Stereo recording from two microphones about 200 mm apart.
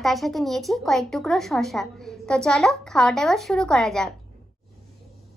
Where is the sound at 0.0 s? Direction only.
Centre (ahead or behind).